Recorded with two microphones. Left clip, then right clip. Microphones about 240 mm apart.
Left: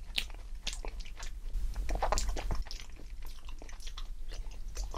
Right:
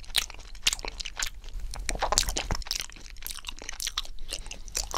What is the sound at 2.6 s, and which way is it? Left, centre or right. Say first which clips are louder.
Chewing: right 14 dB; right.